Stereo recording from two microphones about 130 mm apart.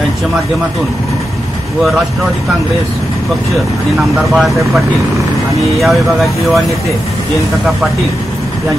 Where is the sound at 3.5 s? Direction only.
Centre (ahead or behind).